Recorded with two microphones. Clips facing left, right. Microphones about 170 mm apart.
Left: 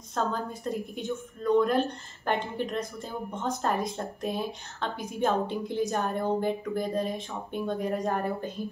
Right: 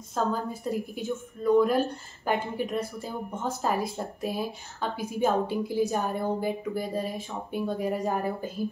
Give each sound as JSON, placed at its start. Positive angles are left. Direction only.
{"t": 0.1, "sound": "a woman's voice", "side_deg": -5}